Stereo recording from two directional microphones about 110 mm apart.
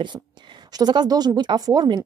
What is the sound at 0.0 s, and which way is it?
A woman's voice, 45° right (ahead or behind).